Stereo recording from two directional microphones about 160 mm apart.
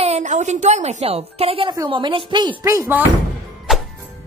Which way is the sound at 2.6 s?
20° right (ahead or behind).